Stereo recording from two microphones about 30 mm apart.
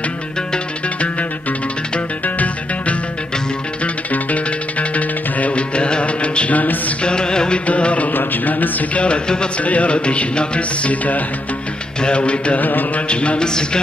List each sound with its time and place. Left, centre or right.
2.2 s music: left
7.0 s music: left
7.5 s music: left
8.1 s a sound: left
8.9 s music: left
10.9 s music: left
12.2 s music: left
12.5 s music: left
13.1 s music: left
13.4 s speech: left